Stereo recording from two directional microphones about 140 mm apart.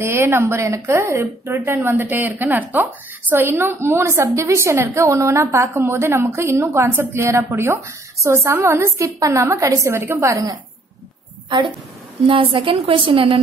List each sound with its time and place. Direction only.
0.0 s speech: 15° right (ahead or behind)
12.3 s a woman's voice: 35° right (ahead or behind)